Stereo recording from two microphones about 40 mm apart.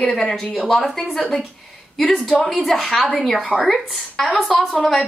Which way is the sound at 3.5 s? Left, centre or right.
Centre.